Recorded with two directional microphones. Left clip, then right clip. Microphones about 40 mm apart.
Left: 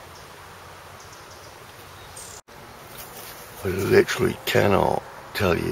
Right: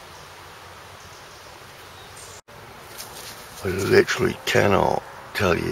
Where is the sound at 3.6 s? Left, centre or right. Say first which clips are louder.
Right 1 dB; right.